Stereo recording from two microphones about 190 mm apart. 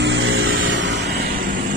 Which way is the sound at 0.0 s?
80° right.